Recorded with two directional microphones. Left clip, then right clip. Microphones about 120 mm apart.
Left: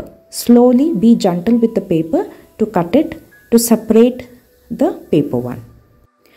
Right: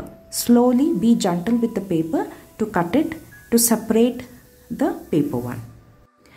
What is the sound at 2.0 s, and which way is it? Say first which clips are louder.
A woman's voice: left 6 dB; 25° left (ahead or behind).